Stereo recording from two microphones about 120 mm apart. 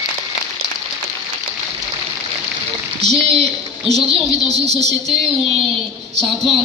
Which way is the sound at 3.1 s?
60° right (ahead or behind).